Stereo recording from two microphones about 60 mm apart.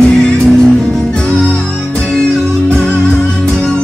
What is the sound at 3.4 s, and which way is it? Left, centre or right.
Music, centre.